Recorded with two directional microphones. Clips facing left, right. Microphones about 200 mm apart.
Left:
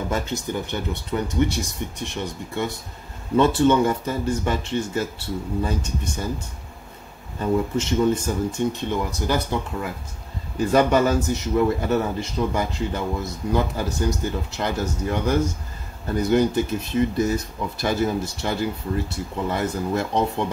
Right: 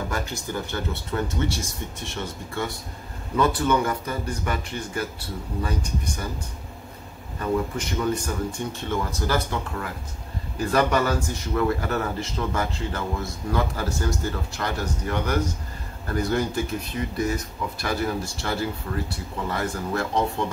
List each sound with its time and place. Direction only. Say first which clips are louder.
0.1 s speech: left 4 dB; 20° left (ahead or behind)
7.3 s speech: left 3 dB; 25° left (ahead or behind)